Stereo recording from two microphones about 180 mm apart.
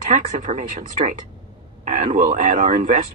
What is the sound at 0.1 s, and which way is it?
A woman's voice, 45° right (ahead or behind).